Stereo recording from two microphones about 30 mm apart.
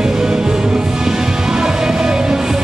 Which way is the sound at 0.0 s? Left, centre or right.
Right.